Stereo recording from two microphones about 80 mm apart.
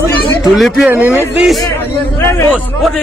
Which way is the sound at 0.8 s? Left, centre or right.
Right.